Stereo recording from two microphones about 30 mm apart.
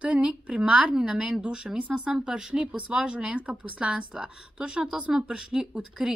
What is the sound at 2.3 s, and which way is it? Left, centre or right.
Speech, right.